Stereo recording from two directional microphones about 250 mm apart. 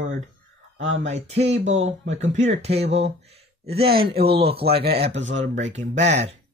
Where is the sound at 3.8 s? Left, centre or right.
Right.